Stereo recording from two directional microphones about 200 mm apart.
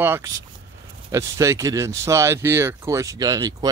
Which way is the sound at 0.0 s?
10° right (ahead or behind).